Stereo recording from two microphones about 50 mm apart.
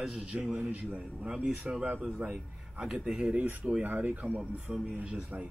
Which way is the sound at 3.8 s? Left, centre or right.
Right.